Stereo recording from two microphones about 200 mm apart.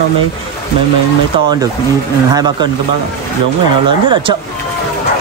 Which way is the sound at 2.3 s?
20° right (ahead or behind).